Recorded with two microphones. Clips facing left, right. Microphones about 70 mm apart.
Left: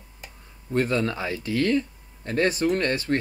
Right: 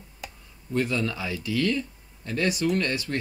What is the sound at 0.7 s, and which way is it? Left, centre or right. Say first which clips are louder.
Speech: left 3 dB; left.